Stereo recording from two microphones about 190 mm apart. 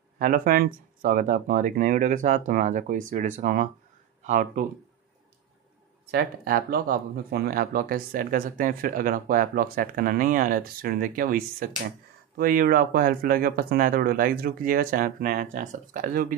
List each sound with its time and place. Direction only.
0.2 s speech: 50° right (ahead or behind)
6.1 s speech: 50° right (ahead or behind)